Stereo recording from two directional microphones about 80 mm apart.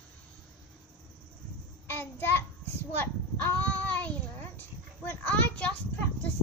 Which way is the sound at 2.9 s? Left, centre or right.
Left.